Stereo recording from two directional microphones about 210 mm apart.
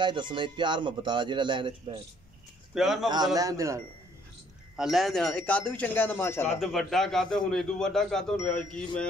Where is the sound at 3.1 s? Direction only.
20° right (ahead or behind).